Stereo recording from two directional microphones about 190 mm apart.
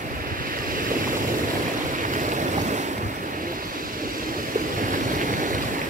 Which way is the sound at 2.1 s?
40° right (ahead or behind).